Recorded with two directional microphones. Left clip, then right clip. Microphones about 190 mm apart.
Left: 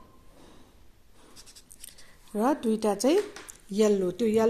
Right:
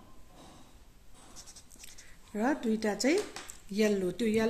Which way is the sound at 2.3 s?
15° left (ahead or behind).